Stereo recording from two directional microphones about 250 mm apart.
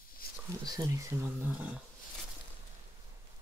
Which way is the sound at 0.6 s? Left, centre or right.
Centre.